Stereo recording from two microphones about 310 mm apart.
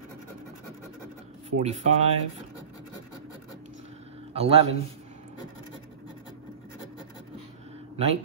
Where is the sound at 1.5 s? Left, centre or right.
Right.